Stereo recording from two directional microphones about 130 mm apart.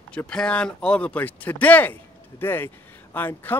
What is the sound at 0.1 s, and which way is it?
Speech, 10° left (ahead or behind).